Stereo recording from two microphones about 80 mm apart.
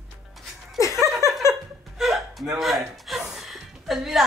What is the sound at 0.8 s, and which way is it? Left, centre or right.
Chuckle, right.